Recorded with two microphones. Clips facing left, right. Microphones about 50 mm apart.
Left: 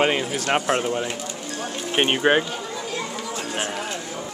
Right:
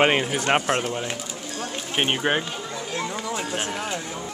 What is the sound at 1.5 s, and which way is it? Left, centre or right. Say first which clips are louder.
Music: left 3 dB; centre.